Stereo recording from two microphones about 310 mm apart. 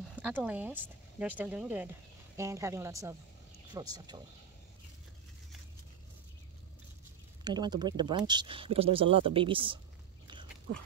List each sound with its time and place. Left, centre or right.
0.1 s speech: centre
7.4 s speech: centre
10.7 s speech: right